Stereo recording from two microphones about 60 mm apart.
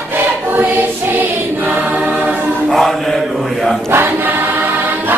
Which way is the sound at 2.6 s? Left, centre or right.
Centre.